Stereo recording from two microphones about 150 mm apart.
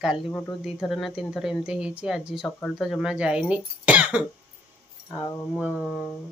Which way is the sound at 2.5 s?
15° left (ahead or behind).